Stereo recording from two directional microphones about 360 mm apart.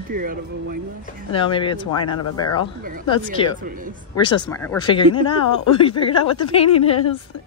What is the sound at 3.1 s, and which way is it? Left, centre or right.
Speech, centre.